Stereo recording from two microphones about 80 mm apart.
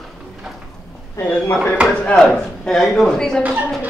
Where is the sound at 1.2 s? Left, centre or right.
Left.